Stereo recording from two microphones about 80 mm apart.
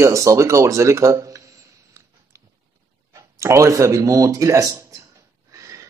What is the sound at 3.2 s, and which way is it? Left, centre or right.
Speech, right.